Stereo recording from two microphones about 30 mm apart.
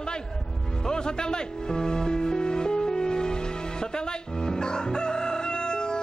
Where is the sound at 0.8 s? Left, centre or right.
Left.